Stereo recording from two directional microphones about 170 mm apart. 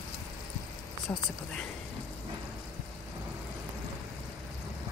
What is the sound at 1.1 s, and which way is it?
Speech, 15° left (ahead or behind).